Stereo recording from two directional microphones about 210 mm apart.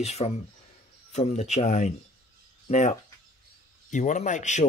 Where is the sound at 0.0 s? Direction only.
30° left (ahead or behind).